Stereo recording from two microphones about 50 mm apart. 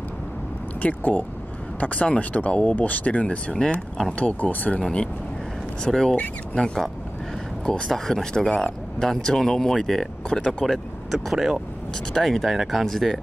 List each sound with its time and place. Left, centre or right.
0.7 s speech: left
4.7 s speech: centre
12.1 s speech: centre